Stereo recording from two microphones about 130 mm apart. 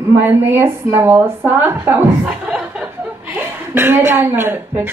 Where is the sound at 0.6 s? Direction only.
15° right (ahead or behind).